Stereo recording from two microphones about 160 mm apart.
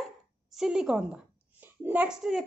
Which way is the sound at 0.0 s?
Centre (ahead or behind).